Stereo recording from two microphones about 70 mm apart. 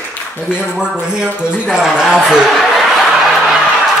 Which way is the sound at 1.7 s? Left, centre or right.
Centre.